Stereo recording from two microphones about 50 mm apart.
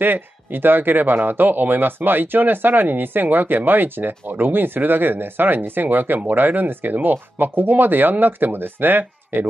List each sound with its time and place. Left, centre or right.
0.0 s speech: right